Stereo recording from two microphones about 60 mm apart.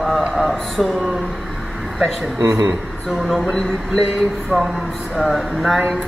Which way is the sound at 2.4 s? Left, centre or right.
Right.